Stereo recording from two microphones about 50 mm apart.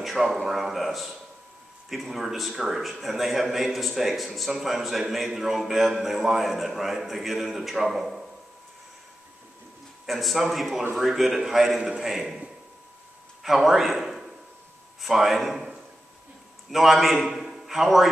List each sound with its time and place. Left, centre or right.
0.0 s a man's voice: centre
10.0 s a man's voice: centre
13.4 s a man's voice: centre
17.4 s a sound: centre